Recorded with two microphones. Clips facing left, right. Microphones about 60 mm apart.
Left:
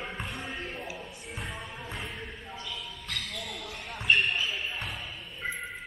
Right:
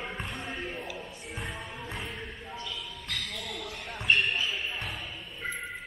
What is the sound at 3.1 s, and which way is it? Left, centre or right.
Basketball bounce, right.